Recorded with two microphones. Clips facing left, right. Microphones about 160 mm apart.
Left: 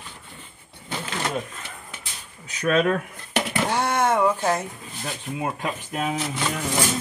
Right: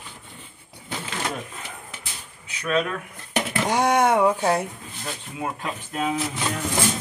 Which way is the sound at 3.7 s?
10° right (ahead or behind).